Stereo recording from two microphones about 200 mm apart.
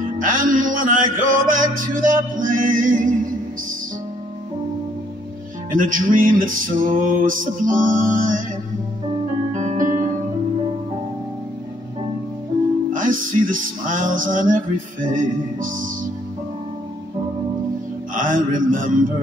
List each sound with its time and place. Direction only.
0.0 s music: 40° right (ahead or behind)
5.7 s music: 40° right (ahead or behind)
9.6 s music: 40° right (ahead or behind)
12.9 s music: 40° right (ahead or behind)
18.1 s speech: 40° right (ahead or behind)